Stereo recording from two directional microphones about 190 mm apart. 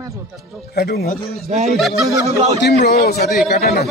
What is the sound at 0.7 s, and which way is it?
Speech, 55° left (ahead or behind).